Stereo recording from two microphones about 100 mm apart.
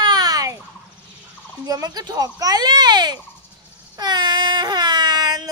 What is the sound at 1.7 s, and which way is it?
A child's voice, 40° right (ahead or behind).